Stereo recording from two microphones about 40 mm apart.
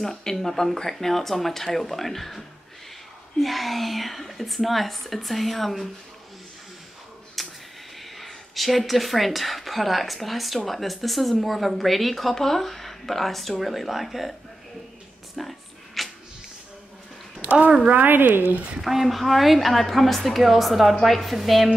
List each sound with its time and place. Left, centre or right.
0.0 s a woman's voice: centre
7.4 s a sound: centre
8.2 s a woman's voice: centre
15.3 s a sound: centre
17.9 s a woman's voice: right
18.8 s a woman's voice: centre